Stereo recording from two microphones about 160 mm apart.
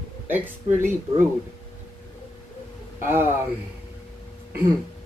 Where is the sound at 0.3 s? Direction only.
15° right (ahead or behind).